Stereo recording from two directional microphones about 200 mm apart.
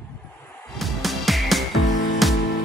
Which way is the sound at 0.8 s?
Centre (ahead or behind).